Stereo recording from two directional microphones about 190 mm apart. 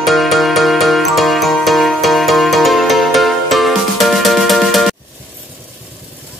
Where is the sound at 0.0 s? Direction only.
Centre (ahead or behind).